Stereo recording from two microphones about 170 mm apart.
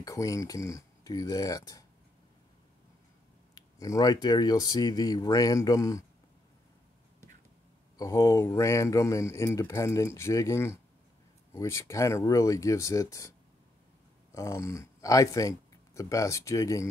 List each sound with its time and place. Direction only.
0.0 s speech: 20° left (ahead or behind)
3.5 s speech: 20° left (ahead or behind)
8.0 s speech: 15° left (ahead or behind)
14.3 s speech: 15° left (ahead or behind)